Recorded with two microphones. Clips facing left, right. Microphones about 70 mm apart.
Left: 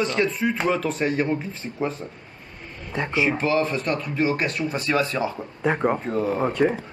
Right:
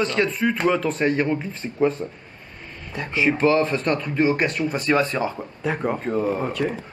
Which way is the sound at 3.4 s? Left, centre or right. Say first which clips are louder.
Right 3 dB; right.